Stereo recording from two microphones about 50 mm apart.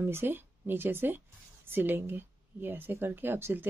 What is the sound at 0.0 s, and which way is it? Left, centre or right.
Speech, right.